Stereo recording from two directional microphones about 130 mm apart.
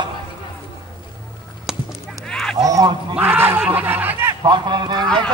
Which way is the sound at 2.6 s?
25° right (ahead or behind).